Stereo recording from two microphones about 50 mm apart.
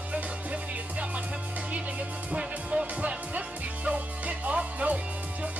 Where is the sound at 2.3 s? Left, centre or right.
Centre.